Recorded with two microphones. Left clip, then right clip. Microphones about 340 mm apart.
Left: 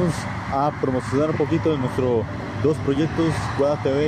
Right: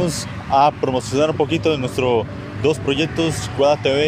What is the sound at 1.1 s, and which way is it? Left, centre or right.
Speech, right.